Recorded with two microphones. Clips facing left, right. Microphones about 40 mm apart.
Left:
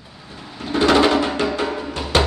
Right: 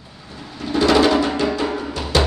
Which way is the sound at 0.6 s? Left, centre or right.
Left.